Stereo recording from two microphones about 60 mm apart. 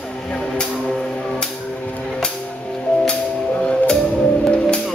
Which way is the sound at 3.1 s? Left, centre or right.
Centre.